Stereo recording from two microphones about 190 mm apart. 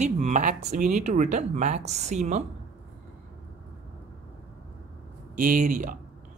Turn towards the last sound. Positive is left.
turn(degrees=-45)  # may be behind; listen again after turning